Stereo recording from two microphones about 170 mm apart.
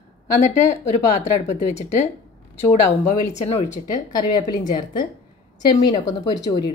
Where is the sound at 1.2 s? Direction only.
40° left (ahead or behind).